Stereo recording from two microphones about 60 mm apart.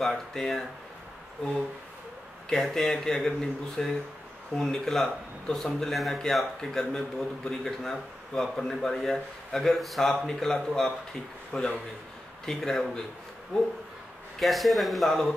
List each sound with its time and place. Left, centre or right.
0.0 s speech: centre
2.5 s speech: centre
14.4 s speech: centre